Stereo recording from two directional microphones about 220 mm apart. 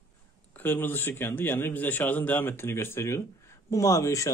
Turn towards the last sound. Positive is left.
turn(degrees=15)  # may be behind; listen again after turning